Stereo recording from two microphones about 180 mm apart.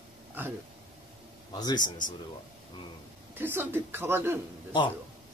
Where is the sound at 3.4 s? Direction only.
10° right (ahead or behind).